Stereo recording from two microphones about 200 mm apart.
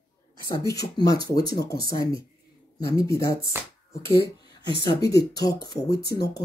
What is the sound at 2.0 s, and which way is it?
Speech, 25° right (ahead or behind).